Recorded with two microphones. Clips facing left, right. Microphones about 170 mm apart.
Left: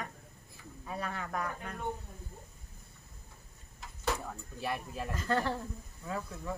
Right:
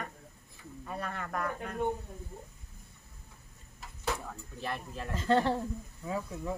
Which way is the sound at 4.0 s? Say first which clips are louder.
Left 1 dB; 5° left (ahead or behind).